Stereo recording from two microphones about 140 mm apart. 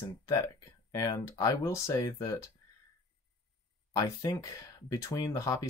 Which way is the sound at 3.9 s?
25° left (ahead or behind).